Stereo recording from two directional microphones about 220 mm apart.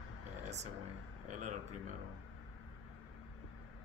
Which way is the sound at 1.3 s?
35° right (ahead or behind).